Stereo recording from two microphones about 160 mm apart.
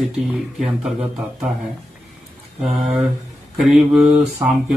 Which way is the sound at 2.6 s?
Centre (ahead or behind).